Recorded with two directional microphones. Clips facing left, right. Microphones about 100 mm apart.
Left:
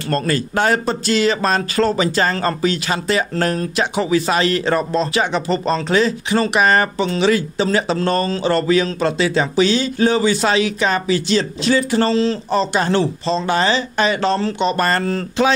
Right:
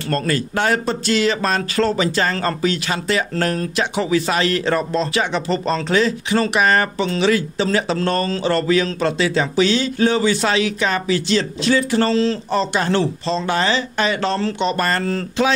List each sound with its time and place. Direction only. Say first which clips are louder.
0.1 s speech: left 1 dB; 30° left (ahead or behind); by 14.8 s 15° left (ahead or behind)
14.8 s speech: left 2 dB; 35° left (ahead or behind)